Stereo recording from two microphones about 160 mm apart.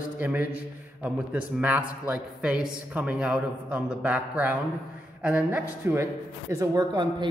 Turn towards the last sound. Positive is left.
turn(degrees=-25)  # may be behind; listen again after turning